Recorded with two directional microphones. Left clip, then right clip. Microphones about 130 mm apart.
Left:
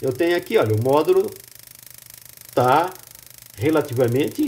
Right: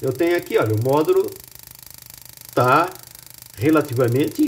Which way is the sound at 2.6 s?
5° left (ahead or behind).